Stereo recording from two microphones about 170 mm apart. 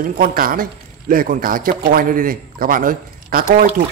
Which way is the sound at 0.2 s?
55° right (ahead or behind).